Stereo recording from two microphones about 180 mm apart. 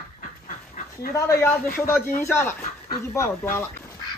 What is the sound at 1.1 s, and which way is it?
Speech, 15° left (ahead or behind).